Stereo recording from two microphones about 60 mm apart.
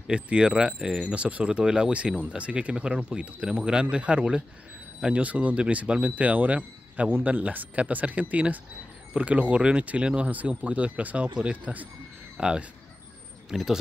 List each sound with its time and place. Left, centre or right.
0.0 s speech: centre
12.4 s speech: centre